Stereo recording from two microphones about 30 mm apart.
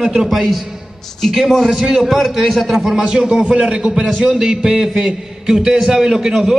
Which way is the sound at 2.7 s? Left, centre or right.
Right.